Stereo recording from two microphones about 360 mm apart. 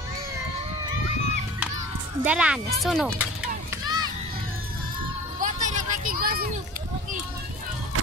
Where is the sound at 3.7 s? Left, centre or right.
Centre.